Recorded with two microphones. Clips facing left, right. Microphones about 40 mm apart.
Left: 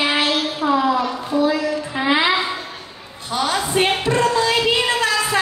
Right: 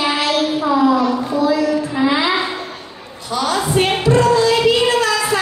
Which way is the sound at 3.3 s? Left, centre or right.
Left.